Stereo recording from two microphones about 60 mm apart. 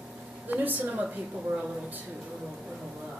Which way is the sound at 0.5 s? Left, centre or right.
Right.